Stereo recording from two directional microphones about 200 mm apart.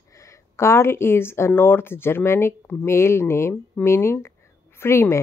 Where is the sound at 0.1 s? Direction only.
15° left (ahead or behind).